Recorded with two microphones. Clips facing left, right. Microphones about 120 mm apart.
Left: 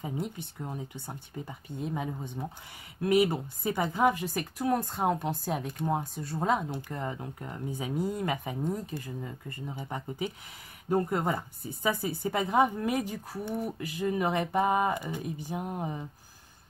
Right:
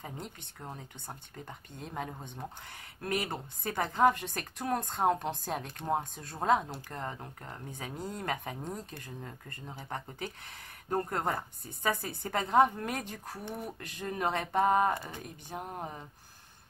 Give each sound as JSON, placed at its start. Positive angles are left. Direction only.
{"t": 0.0, "sound": "a woman's voice", "side_deg": 5}